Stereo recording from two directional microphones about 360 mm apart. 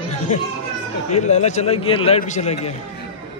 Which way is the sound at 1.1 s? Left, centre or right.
Centre.